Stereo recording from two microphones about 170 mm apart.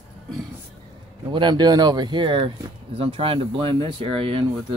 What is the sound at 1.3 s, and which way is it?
Speech, 25° right (ahead or behind).